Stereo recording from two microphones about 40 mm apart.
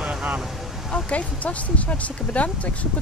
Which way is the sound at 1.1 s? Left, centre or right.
Left.